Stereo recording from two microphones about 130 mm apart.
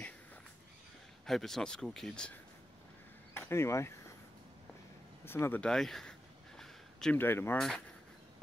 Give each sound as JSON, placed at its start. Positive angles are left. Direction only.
{"t": 1.2, "sound": "speech", "side_deg": 0}
{"t": 3.3, "sound": "speech", "side_deg": 20}
{"t": 5.2, "sound": "a sound", "side_deg": 15}
{"t": 7.2, "sound": "speech", "side_deg": 15}
{"t": 7.5, "sound": "speech", "side_deg": 5}